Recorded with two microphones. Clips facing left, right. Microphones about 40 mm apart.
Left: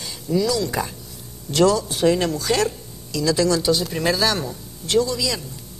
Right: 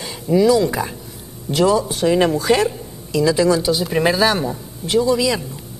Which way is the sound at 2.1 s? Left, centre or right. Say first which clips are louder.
Right 6 dB; right.